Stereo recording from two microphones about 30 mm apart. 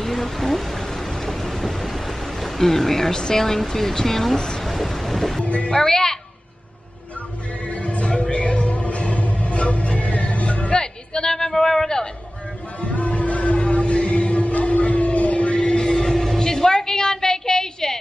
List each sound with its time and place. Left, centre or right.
0.0 s a sound: centre
3.2 s speech: centre
5.4 s speech: left
5.7 s speech: left
7.6 s music: left
10.7 s a sound: left
12.8 s music: left
15.5 s a sound: left
16.3 s music: left